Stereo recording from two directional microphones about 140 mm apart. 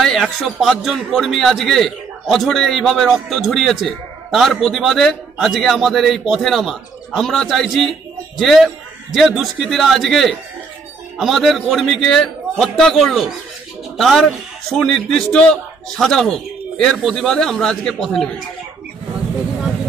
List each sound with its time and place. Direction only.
0.0 s a man's voice: centre (ahead or behind)